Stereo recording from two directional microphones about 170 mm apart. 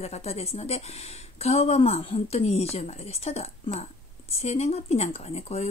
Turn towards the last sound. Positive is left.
turn(degrees=40)  # may be behind; listen again after turning